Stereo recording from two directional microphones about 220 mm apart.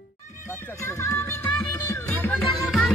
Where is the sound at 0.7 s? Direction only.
10° left (ahead or behind).